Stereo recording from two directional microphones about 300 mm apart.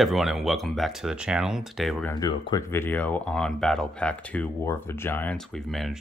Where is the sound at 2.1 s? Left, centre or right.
Centre.